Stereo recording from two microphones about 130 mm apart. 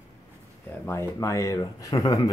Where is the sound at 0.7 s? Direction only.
20° left (ahead or behind).